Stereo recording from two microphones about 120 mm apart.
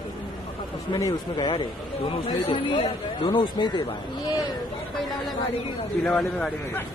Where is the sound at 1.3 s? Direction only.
40° left (ahead or behind).